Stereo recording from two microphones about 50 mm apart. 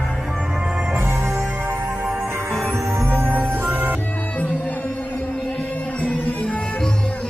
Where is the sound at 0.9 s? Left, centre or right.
Right.